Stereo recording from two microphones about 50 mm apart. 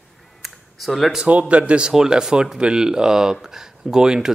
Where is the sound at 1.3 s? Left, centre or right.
Right.